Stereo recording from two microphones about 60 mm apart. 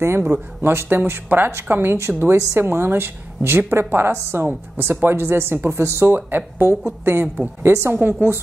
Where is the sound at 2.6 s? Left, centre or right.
Right.